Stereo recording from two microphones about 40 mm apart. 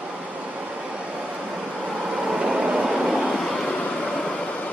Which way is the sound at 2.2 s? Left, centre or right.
Centre.